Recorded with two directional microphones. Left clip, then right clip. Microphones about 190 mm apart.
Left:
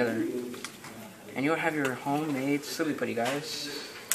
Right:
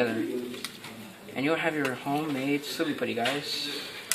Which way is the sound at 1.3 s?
Centre (ahead or behind).